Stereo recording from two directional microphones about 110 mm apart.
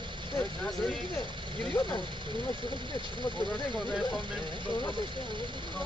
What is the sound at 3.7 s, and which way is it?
Speech, centre (ahead or behind).